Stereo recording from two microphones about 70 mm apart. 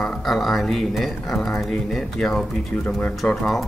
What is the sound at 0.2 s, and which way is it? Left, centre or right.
Speech, centre.